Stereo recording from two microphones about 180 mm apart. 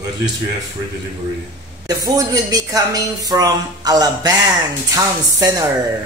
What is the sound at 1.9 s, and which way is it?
Speech, 20° right (ahead or behind).